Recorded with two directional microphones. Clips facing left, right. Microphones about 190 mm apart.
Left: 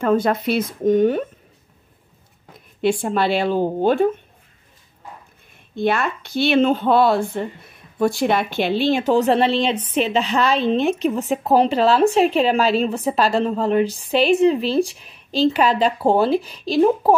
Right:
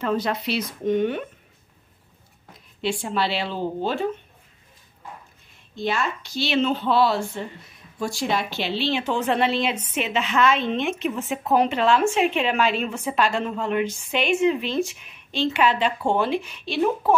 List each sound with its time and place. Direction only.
0.0 s speech: 50° left (ahead or behind)
2.8 s speech: 50° left (ahead or behind)
5.8 s speech: 60° left (ahead or behind); by 17.2 s 35° left (ahead or behind)